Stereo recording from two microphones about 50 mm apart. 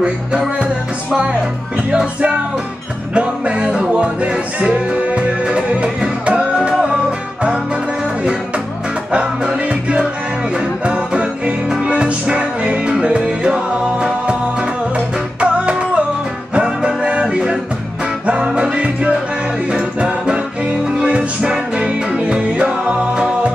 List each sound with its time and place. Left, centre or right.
1.9 s music: centre
9.5 s music: right
15.4 s music: right